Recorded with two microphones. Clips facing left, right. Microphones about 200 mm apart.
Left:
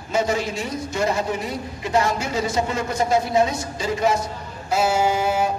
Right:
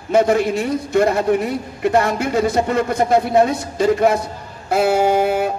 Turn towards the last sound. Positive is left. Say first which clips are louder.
# right 4 dB
turn(degrees=-60)  # may be behind; listen again after turning